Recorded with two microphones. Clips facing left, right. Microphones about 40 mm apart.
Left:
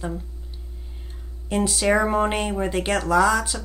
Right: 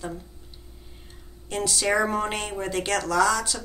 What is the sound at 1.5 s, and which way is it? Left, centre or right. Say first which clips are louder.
Speech: left 4 dB; centre.